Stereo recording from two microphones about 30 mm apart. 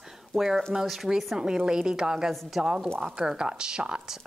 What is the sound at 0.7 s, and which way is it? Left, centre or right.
Speech, centre.